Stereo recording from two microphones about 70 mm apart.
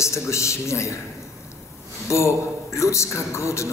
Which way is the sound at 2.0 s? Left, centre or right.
Left.